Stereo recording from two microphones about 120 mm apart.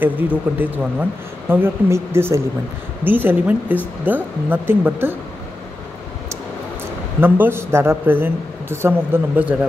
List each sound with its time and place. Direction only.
0.0 s a man's voice: 15° right (ahead or behind)
7.2 s a man's voice: 15° right (ahead or behind)